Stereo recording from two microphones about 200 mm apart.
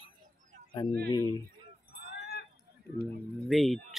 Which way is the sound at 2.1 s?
50° left (ahead or behind).